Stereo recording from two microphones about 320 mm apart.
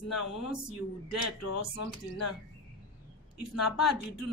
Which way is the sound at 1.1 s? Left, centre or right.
Left.